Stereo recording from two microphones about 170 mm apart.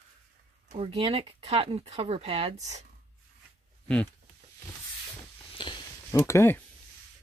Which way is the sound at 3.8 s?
5° left (ahead or behind).